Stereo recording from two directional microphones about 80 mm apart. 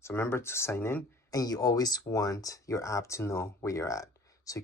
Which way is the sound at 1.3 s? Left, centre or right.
Left.